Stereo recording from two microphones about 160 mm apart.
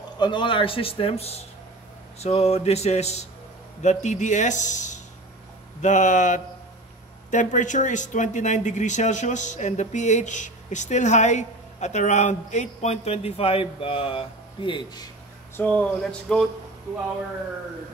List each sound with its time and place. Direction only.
0.2 s a man's voice: 30° left (ahead or behind)
15.5 s speech: 10° left (ahead or behind)